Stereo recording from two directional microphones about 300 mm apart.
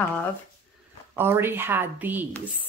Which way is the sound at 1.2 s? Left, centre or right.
Centre.